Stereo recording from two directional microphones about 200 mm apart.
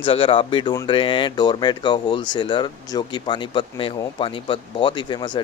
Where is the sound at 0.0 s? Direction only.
25° left (ahead or behind).